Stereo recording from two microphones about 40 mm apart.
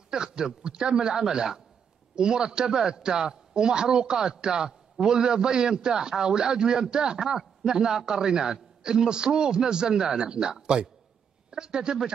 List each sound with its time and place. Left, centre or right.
0.1 s a man's voice: centre
11.5 s speech: right